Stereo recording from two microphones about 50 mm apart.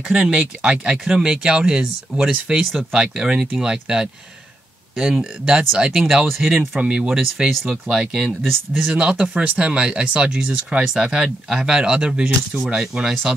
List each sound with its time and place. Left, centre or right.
0.1 s speech: right; by 5.2 s centre
5.4 s speech: centre
6.2 s speech: centre
6.8 s speech: centre
8.4 s speech: centre
8.8 s speech: right